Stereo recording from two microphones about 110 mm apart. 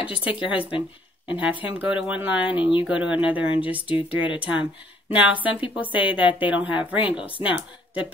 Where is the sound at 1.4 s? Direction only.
15° right (ahead or behind).